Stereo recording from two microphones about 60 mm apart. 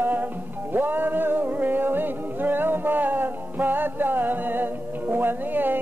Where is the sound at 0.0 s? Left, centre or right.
Right.